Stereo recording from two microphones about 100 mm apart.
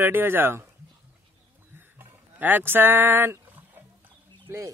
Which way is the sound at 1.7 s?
20° right (ahead or behind).